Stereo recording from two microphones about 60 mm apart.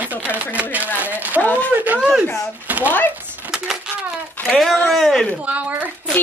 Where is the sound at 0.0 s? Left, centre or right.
Right.